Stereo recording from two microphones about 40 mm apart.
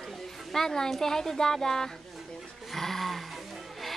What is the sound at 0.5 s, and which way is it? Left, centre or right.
Speech, centre.